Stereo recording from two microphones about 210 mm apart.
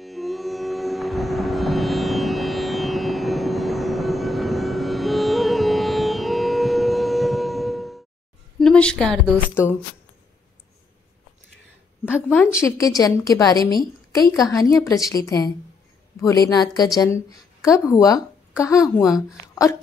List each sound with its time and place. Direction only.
0.0 s music: centre (ahead or behind)
8.5 s a woman's voice: 5° left (ahead or behind)
12.3 s a woman's voice: 10° left (ahead or behind)